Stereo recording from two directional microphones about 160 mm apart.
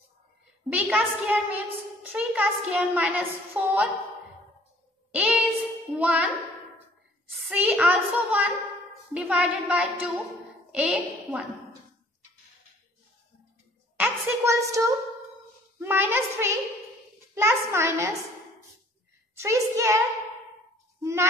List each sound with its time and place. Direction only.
0.7 s a woman's voice: 5° right (ahead or behind)
5.1 s a sound: 10° right (ahead or behind)
5.9 s a woman's voice: 10° right (ahead or behind)
7.2 s a sound: centre (ahead or behind)
7.5 s a woman's voice: 5° right (ahead or behind)
13.9 s a sound: 10° right (ahead or behind)
15.8 s a woman's voice: 15° right (ahead or behind)
19.3 s a woman's voice: 15° right (ahead or behind)
21.0 s a child's voice: 15° right (ahead or behind)